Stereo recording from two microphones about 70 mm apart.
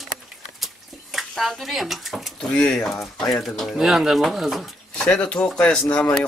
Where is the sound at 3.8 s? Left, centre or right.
Centre.